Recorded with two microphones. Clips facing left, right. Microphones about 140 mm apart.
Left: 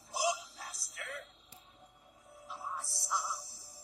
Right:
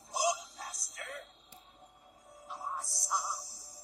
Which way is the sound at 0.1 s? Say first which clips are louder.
Right 2 dB; 40° right (ahead or behind).